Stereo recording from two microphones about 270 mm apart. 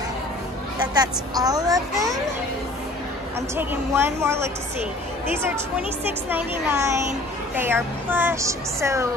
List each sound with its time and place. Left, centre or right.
1.3 s a woman's voice: centre
3.3 s a woman's voice: centre
6.3 s a woman's voice: centre